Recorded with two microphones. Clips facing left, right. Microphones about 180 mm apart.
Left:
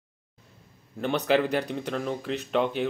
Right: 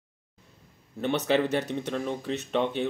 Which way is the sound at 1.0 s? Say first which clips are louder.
Left 1 dB; 20° right (ahead or behind).